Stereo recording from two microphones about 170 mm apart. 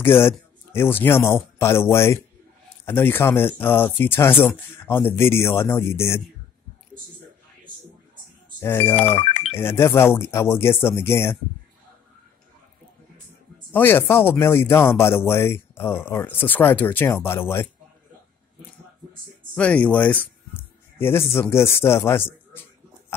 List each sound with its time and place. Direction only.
0.0 s speech: 15° left (ahead or behind)
8.5 s speech: 15° left (ahead or behind)
9.2 s music: 35° left (ahead or behind)
9.6 s speech: 15° left (ahead or behind)
13.7 s speech: 10° left (ahead or behind)
19.5 s speech: 5° left (ahead or behind)